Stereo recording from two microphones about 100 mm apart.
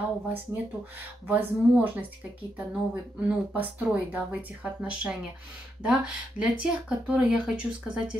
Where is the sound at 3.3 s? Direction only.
15° right (ahead or behind).